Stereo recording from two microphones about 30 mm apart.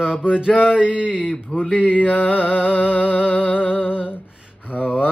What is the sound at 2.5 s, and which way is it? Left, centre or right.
Mantra, right.